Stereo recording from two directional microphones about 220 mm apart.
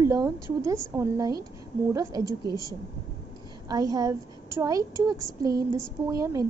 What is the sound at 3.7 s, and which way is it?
Speech, 15° right (ahead or behind).